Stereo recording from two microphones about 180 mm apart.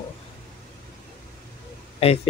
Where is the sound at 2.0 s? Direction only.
35° left (ahead or behind).